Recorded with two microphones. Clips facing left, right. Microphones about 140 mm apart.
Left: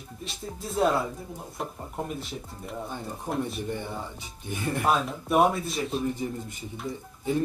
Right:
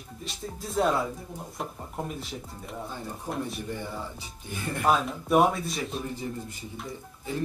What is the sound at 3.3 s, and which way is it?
Speech, 15° left (ahead or behind).